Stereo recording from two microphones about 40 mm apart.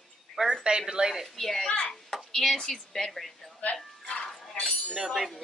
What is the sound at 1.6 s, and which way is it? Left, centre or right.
Speech, left.